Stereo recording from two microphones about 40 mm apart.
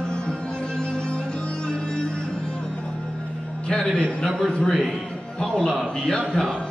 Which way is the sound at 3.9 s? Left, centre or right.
Left.